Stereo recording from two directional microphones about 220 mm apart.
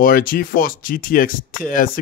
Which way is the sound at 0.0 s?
40° left (ahead or behind).